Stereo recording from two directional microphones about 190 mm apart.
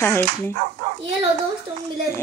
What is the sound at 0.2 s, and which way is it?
Speech, 45° right (ahead or behind).